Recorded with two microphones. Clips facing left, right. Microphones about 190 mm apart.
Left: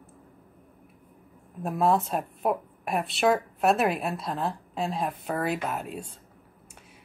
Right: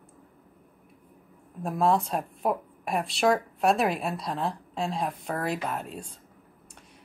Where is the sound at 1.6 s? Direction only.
Centre (ahead or behind).